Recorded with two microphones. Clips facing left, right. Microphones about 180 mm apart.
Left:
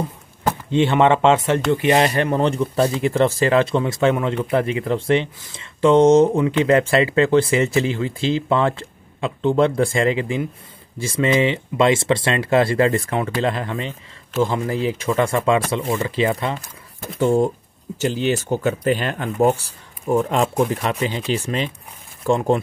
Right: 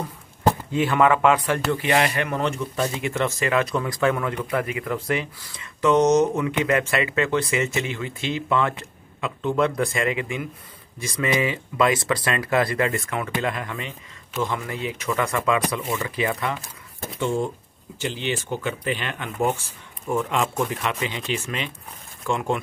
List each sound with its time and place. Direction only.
0.7 s speech: 25° left (ahead or behind)
17.2 s speech: 40° left (ahead or behind)